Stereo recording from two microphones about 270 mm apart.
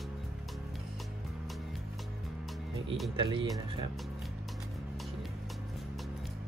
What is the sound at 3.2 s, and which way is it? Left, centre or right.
Speech, centre.